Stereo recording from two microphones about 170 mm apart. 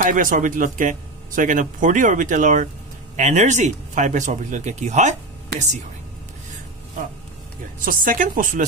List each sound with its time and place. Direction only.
0.0 s speech: 50° right (ahead or behind)
7.8 s speech: 55° right (ahead or behind)